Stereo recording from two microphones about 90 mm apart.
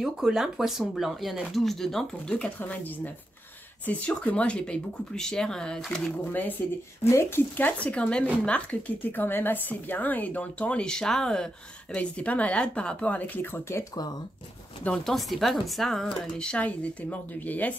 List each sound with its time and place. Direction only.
0.0 s speech: 5° right (ahead or behind)
7.1 s speech: 30° left (ahead or behind)
14.8 s speech: 10° left (ahead or behind)
15.1 s speech: centre (ahead or behind); by 17.7 s 20° left (ahead or behind)